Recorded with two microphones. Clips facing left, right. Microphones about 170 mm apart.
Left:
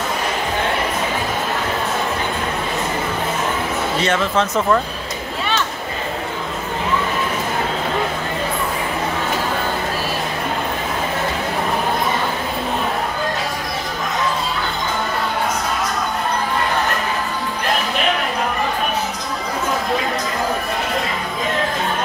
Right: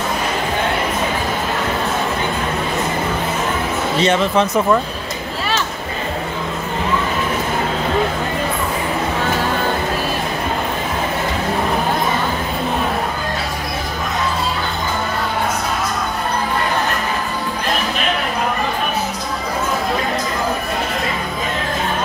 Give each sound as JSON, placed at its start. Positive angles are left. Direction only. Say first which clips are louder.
{"t": 4.0, "sound": "speech", "louder": "right 4 dB", "side_deg": -20}